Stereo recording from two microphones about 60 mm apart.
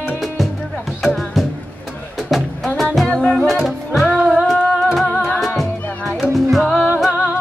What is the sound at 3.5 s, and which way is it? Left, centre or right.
Music, centre.